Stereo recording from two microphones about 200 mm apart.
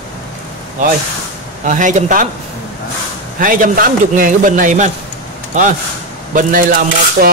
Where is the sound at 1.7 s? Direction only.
40° right (ahead or behind).